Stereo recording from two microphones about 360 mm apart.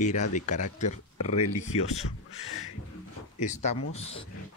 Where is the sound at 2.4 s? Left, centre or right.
Left.